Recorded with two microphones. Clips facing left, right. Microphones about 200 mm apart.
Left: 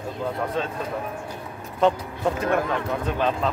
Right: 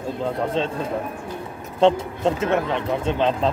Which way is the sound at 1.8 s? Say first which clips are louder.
Right 4 dB; 25° right (ahead or behind).